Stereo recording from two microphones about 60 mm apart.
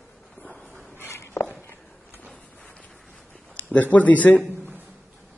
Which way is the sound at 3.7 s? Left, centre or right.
Left.